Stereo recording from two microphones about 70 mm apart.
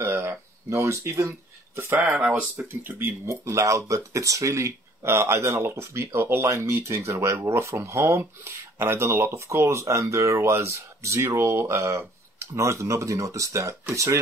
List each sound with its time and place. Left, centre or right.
0.0 s a sound: right
2.0 s speech: right
2.8 s speech: right
3.3 s speech: right